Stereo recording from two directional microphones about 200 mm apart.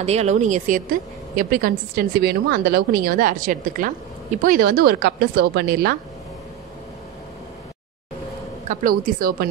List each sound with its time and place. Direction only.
0.0 s a woman's voice: 35° right (ahead or behind); by 5.9 s 50° right (ahead or behind)
8.6 s a woman's voice: 45° right (ahead or behind)